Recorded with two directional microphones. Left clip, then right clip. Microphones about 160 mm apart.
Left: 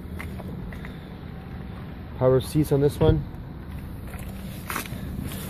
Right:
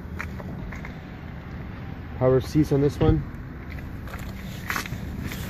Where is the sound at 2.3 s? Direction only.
Centre (ahead or behind).